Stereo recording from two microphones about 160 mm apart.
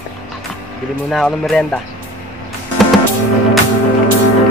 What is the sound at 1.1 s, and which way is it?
Speech, centre (ahead or behind).